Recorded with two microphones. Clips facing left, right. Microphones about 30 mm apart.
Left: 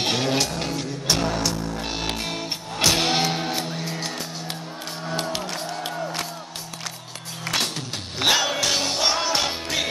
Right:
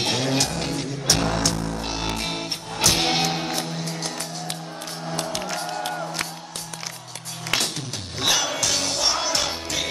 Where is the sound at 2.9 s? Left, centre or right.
Centre.